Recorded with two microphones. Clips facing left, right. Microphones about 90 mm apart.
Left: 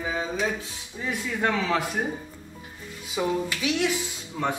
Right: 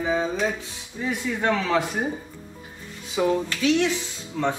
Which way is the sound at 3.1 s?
5° left (ahead or behind).